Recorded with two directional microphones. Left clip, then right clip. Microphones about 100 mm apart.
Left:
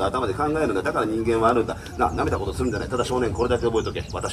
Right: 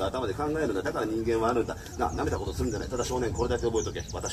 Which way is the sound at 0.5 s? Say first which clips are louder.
Left 6 dB; 25° right (ahead or behind).